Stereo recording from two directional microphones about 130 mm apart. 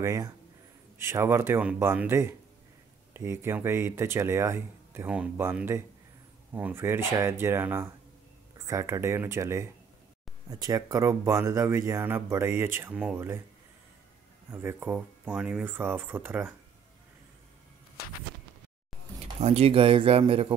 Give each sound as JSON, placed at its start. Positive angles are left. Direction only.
{"t": 0.0, "sound": "speech", "side_deg": -25}
{"t": 14.5, "sound": "speech", "side_deg": -15}
{"t": 19.4, "sound": "speech", "side_deg": -50}